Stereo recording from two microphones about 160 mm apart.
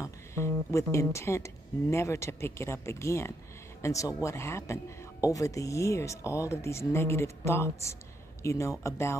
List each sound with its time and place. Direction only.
0.0 s speech: 20° left (ahead or behind)